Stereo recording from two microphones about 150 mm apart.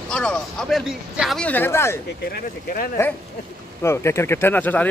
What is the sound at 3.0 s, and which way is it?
Speech, 20° left (ahead or behind).